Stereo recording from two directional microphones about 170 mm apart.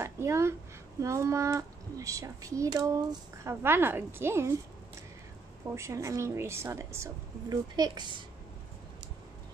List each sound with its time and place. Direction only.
0.0 s speech: 15° right (ahead or behind)
5.8 s speech: 20° right (ahead or behind)